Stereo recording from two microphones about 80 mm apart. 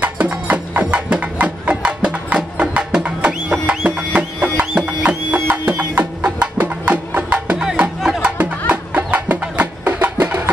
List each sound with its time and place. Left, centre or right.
0.0 s music: centre
8.4 s music: centre